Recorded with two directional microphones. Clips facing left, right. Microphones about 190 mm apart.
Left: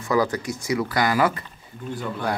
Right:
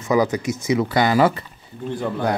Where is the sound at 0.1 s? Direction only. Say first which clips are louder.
Right 3 dB; 20° right (ahead or behind).